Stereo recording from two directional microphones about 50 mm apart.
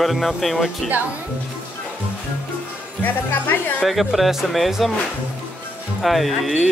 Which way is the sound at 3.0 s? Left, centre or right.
Left.